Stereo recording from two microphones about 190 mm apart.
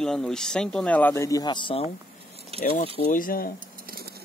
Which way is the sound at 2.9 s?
40° left (ahead or behind).